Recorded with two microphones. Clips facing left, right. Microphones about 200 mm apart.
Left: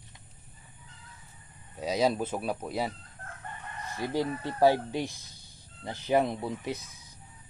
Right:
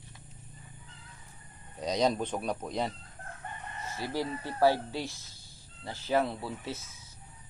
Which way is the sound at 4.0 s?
15° left (ahead or behind).